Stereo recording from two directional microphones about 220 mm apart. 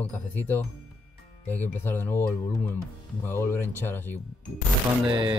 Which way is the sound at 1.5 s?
10° left (ahead or behind).